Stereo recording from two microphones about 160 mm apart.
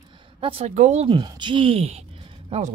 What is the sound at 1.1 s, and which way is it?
Speech, 30° right (ahead or behind).